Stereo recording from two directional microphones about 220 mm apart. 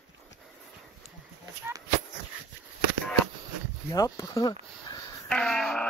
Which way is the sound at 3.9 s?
15° left (ahead or behind).